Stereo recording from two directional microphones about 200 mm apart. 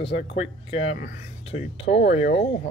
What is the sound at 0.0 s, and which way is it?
Speech, 60° left (ahead or behind).